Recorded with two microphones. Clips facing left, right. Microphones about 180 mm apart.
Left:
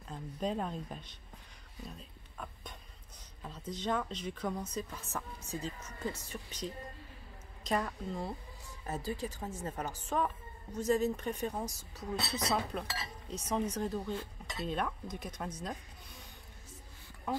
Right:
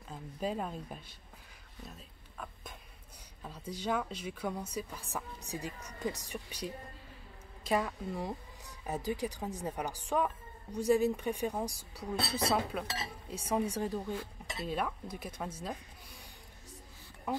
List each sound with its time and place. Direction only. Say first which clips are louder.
0.1 s speech: left 1 dB; 5° right (ahead or behind)
1.9 s a sound: left 2 dB; centre (ahead or behind)
3.4 s a woman's voice: even; 10° right (ahead or behind)